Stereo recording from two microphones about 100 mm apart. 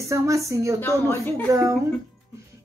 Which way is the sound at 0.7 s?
20° left (ahead or behind).